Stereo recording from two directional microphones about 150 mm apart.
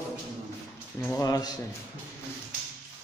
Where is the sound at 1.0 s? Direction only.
10° left (ahead or behind).